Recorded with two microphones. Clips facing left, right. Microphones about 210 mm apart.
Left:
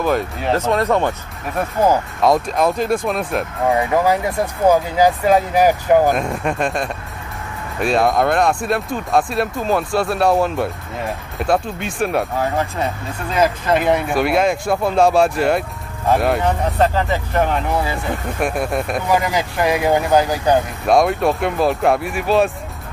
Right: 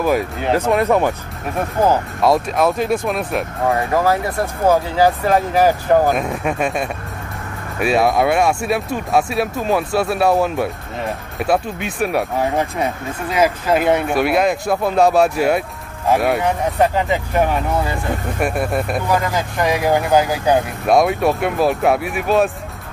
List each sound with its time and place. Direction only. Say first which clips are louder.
0.0 s speech: right 1 dB; 5° right (ahead or behind)
2.2 s speech: even; 5° right (ahead or behind)
3.7 s speech: left 1 dB; 15° left (ahead or behind)
6.0 s speech: even; centre (ahead or behind)
12.4 s speech: right 1 dB; 15° right (ahead or behind)
16.7 s speech: right 1 dB; 15° right (ahead or behind)